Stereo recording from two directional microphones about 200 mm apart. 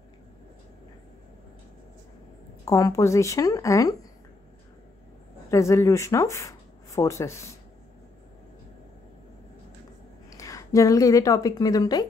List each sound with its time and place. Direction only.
2.6 s speech: 15° left (ahead or behind)
5.5 s speech: 15° left (ahead or behind)
10.3 s a woman's voice: 15° left (ahead or behind)